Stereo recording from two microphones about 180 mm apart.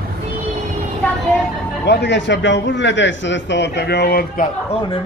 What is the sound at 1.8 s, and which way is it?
A man's voice, 70° left (ahead or behind).